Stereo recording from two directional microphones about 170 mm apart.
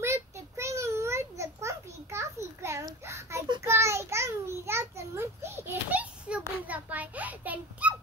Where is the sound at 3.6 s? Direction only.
15° right (ahead or behind).